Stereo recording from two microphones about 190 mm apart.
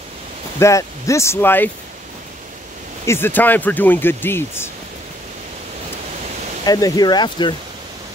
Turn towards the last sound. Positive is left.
turn(degrees=25)  # may be behind; listen again after turning